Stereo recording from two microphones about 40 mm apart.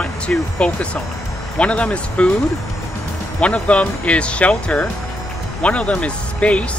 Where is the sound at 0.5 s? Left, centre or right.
Left.